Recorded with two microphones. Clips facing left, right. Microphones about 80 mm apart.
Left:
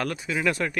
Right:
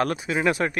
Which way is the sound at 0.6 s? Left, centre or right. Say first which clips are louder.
Right 3 dB; right.